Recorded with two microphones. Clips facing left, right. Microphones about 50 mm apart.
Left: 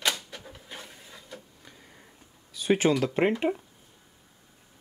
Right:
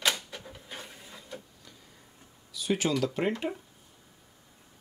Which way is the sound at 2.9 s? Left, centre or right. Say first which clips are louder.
Left 4 dB; left.